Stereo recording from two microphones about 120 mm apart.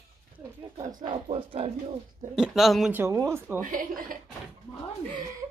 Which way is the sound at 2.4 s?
Centre (ahead or behind).